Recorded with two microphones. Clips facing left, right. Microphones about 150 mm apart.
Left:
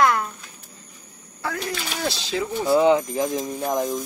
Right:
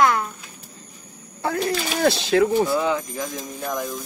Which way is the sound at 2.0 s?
60° right (ahead or behind).